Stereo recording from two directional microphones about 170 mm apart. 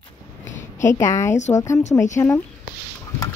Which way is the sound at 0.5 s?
45° left (ahead or behind).